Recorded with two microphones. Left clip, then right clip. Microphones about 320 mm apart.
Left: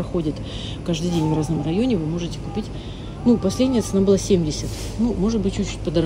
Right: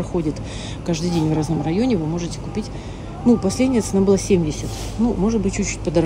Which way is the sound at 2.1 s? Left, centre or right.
Centre.